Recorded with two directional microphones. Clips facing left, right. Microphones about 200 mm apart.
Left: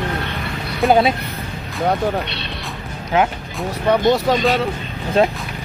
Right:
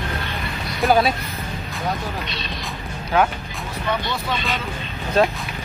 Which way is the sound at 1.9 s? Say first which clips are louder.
Left 8 dB; 65° left (ahead or behind).